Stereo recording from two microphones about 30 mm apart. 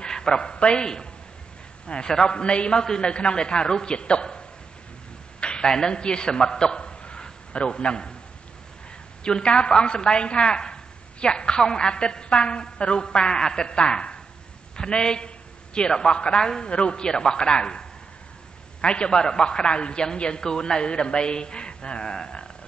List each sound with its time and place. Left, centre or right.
0.0 s speech: left
1.9 s a woman's voice: left
5.4 s a sound: left
5.7 s a man's voice: left
9.2 s a woman's voice: left
13.7 s a woman's voice: left
17.0 s a man's voice: left